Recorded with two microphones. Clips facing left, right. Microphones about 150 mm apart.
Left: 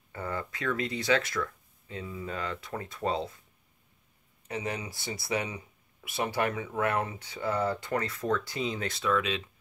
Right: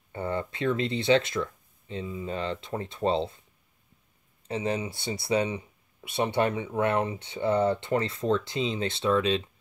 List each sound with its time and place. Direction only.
0.1 s speech: 25° right (ahead or behind)
4.5 s speech: 25° right (ahead or behind)